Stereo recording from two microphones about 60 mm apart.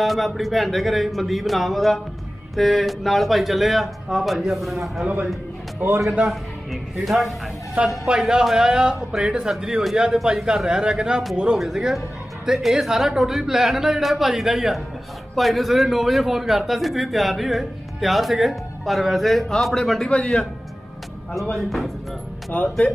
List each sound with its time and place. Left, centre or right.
0.0 s a man's voice: centre
5.8 s a man's voice: right
6.2 s a man's voice: centre
7.8 s speech: right
8.1 s a man's voice: centre
20.1 s a man's voice: centre
21.5 s a man's voice: centre
22.5 s speech: left